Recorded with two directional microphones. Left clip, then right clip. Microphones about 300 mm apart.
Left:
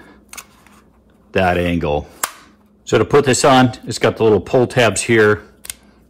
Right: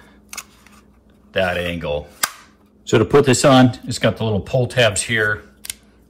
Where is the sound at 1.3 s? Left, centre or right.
Left.